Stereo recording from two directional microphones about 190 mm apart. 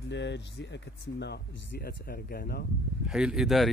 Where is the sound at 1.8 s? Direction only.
50° left (ahead or behind).